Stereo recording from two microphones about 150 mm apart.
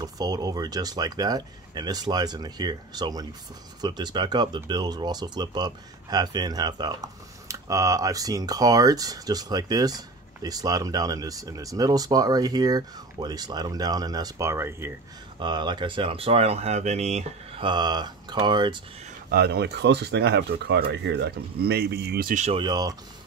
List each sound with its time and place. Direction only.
0.0 s speech: 25° right (ahead or behind)
15.3 s speech: 30° right (ahead or behind)
19.3 s speech: 90° right
22.6 s speech: 25° right (ahead or behind)